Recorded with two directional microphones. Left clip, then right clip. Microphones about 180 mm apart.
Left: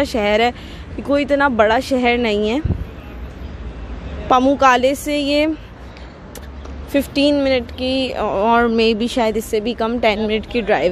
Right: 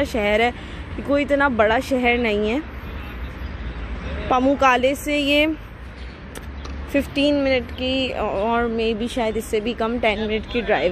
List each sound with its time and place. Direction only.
0.0 s speech: 15° left (ahead or behind)
4.3 s speech: 15° left (ahead or behind)
6.9 s a woman's voice: 20° left (ahead or behind)